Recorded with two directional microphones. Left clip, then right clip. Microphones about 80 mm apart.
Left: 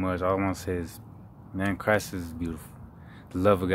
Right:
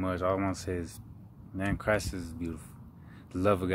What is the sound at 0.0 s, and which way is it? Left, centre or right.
Speech, left.